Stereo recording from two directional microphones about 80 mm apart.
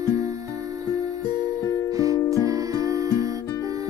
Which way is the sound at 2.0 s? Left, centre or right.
Right.